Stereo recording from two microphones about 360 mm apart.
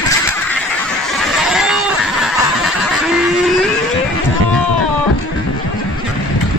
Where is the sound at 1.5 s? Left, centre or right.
Centre.